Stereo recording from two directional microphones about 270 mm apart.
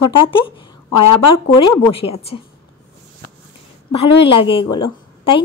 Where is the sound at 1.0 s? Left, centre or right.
Left.